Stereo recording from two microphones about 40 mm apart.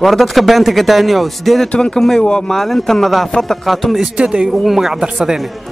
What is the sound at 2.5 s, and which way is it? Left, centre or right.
A man's voice, centre.